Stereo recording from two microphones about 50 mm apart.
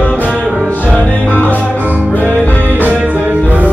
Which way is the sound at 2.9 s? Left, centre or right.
Right.